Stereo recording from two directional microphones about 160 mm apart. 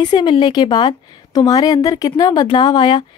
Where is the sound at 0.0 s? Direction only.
30° left (ahead or behind).